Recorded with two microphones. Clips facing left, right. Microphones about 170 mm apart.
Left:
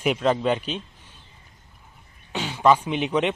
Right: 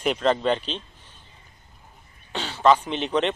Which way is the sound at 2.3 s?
10° left (ahead or behind).